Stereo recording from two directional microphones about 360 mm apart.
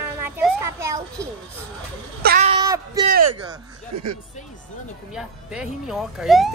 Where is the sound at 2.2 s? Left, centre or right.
Right.